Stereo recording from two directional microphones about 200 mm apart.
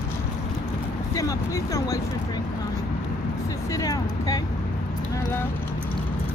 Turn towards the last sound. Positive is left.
turn(degrees=15)  # may be behind; listen again after turning